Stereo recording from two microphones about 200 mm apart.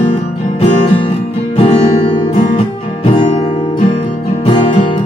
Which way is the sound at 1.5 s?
30° left (ahead or behind).